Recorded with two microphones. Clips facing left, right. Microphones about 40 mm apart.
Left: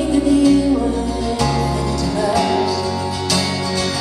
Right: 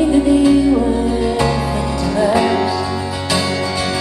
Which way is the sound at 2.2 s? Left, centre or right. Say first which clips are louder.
Right 3 dB; right.